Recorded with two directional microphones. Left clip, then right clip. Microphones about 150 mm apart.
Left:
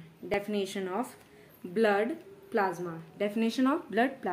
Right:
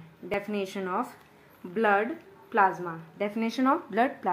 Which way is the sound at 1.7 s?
30° left (ahead or behind).